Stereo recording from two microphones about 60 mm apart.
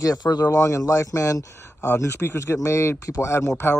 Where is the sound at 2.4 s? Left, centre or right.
Left.